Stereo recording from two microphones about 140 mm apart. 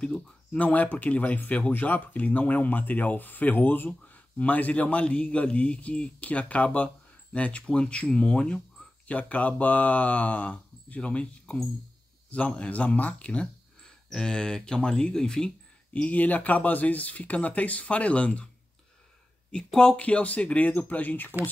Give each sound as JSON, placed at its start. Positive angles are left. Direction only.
{"t": 0.0, "sound": "speech", "side_deg": 5}
{"t": 19.5, "sound": "speech", "side_deg": 5}